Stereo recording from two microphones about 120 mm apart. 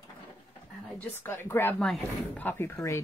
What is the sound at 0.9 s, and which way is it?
Speech, 15° left (ahead or behind).